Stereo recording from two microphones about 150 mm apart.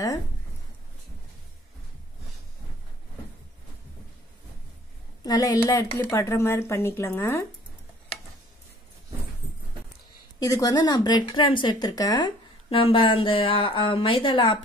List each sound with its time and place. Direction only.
5.2 s a woman's voice: 25° left (ahead or behind)
10.4 s speech: 25° left (ahead or behind)
12.6 s speech: 35° left (ahead or behind)